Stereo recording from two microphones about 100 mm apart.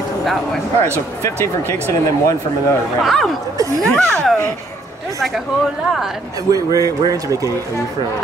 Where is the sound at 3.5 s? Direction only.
35° right (ahead or behind).